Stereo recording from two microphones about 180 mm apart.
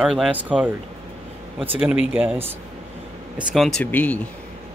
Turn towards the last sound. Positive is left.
turn(degrees=10)  # may be behind; listen again after turning